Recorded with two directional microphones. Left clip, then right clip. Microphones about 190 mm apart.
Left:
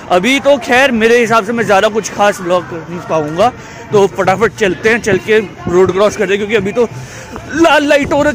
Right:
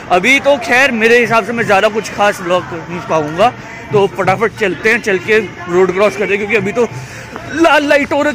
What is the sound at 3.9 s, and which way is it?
Speech, 35° left (ahead or behind).